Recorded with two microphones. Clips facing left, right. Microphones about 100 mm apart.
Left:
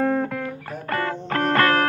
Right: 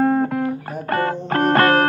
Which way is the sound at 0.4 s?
55° right (ahead or behind).